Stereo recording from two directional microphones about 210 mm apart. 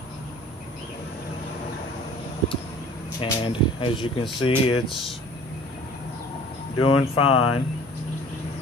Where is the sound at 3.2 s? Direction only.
25° left (ahead or behind).